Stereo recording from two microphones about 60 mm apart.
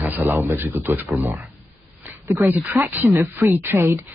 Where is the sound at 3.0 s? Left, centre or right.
Right.